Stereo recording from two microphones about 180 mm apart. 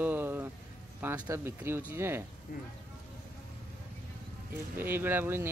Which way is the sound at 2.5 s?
50° left (ahead or behind).